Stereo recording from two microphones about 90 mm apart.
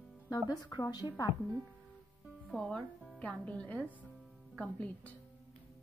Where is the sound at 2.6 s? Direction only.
5° left (ahead or behind).